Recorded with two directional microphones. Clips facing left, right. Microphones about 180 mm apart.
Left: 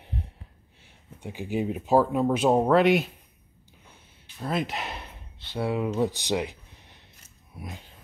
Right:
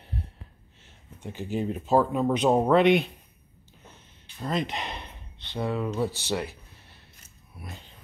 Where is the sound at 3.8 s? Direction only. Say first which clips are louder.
Right 4 dB; 10° left (ahead or behind).